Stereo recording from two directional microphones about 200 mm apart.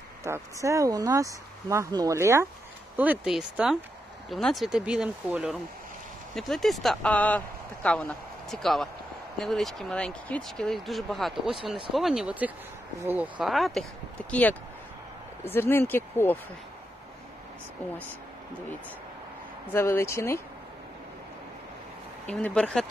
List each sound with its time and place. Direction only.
0.2 s speech: 15° right (ahead or behind); by 16.3 s 10° left (ahead or behind)
19.7 s speech: 10° left (ahead or behind)
22.3 s speech: 5° left (ahead or behind)